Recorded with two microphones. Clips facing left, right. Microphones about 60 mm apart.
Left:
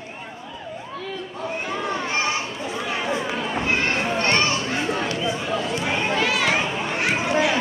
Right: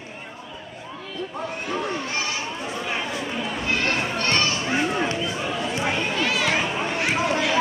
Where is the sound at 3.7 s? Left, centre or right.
Left.